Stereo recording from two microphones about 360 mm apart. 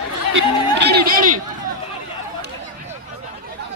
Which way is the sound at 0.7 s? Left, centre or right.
Right.